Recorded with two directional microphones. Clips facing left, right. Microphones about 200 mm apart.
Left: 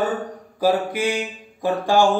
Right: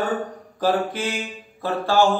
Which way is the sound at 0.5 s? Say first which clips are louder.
Left 2 dB; 10° left (ahead or behind).